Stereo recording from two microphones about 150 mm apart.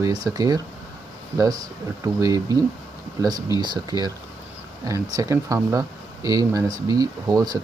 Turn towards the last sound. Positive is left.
turn(degrees=-25)  # may be behind; listen again after turning